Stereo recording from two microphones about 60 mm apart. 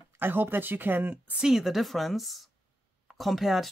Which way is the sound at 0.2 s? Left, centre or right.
Right.